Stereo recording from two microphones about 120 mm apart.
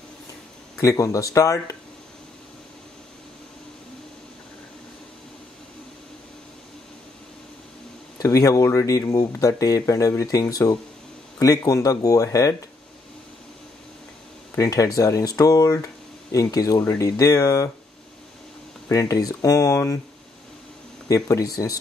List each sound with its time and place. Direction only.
0.7 s speech: 25° left (ahead or behind)
8.2 s speech: 25° left (ahead or behind)
14.6 s speech: 30° left (ahead or behind)
18.9 s speech: 30° left (ahead or behind)
21.1 s speech: 30° left (ahead or behind)